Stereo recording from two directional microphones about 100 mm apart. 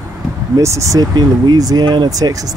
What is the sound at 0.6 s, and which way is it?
Speech, 30° right (ahead or behind).